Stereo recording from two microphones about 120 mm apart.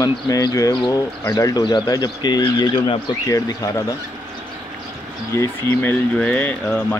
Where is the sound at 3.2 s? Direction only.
30° left (ahead or behind).